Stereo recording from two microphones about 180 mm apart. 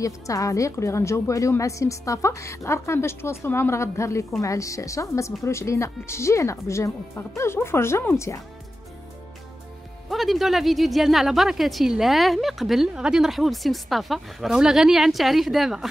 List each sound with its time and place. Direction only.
0.0 s a woman's voice: 20° left (ahead or behind)
10.0 s speech: centre (ahead or behind)